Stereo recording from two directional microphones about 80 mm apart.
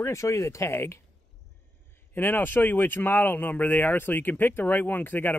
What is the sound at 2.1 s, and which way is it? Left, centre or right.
Speech, left.